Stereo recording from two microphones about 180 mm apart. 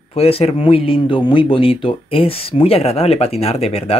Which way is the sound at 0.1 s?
35° left (ahead or behind).